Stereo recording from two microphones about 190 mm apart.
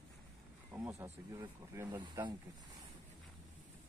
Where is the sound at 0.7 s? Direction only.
10° right (ahead or behind).